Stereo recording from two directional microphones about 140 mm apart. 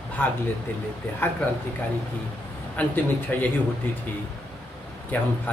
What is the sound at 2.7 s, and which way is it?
Speech, 10° left (ahead or behind).